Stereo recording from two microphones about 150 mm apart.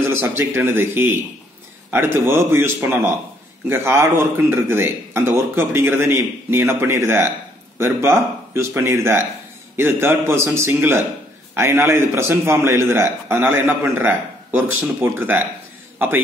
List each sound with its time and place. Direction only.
0.1 s a man's voice: 15° right (ahead or behind)